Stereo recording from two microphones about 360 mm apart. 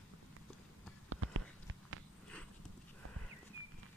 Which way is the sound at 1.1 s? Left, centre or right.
Right.